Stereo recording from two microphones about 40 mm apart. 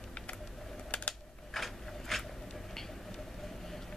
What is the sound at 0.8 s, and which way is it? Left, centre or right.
Typing, left.